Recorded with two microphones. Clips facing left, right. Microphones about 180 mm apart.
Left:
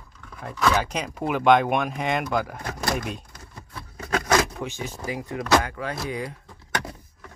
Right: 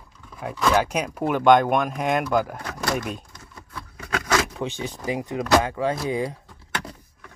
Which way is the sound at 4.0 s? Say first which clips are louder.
Left 3 dB; 35° left (ahead or behind).